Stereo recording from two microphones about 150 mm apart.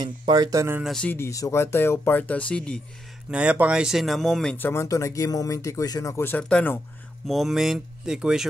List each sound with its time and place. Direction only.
0.2 s speech: 25° right (ahead or behind)
0.8 s speech: 5° left (ahead or behind)
1.1 s speech: 20° left (ahead or behind)
3.3 s speech: 10° right (ahead or behind); by 6.8 s 10° left (ahead or behind)
7.2 s speech: centre (ahead or behind)